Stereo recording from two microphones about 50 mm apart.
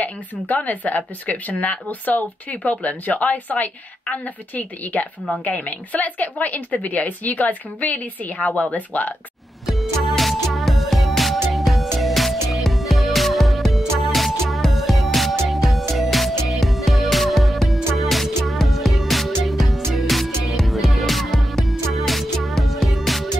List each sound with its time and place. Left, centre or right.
0.0 s speech: left
10.0 s music: centre